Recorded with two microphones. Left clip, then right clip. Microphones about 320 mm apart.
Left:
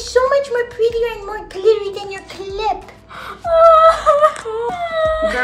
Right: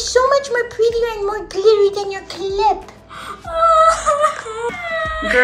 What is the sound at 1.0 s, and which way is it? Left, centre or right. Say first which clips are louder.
Speech: right 2 dB; centre.